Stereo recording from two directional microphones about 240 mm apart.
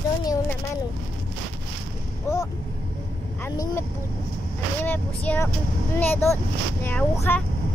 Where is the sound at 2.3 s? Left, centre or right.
Centre.